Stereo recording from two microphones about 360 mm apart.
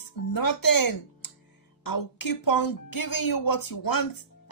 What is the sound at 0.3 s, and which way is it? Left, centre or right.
A woman's voice, left.